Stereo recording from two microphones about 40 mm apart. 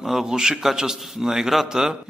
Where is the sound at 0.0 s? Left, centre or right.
Centre.